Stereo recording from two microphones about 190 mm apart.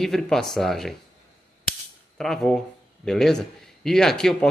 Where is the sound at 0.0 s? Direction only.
Centre (ahead or behind).